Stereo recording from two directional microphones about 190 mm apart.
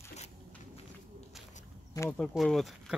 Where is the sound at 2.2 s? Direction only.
Centre (ahead or behind).